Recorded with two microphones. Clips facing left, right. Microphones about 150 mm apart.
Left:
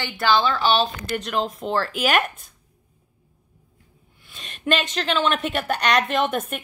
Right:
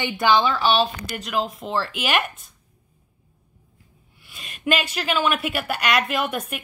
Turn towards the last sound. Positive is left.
turn(degrees=-5)  # may be behind; listen again after turning